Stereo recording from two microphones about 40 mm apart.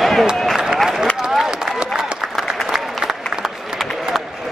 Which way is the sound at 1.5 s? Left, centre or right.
Centre.